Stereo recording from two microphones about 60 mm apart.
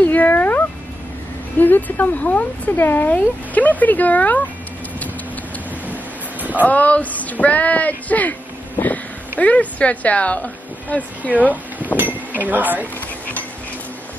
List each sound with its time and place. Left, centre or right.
0.0 s cat: left
1.6 s speech: left
2.7 s speech: left
6.6 s speech: left
12.3 s speech: right